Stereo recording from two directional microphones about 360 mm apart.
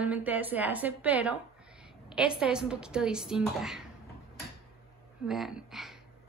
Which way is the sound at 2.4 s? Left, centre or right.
Centre.